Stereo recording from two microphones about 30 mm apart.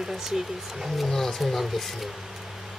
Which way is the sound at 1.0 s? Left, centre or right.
Centre.